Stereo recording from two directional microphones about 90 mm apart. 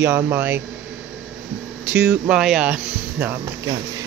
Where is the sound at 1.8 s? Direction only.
15° right (ahead or behind).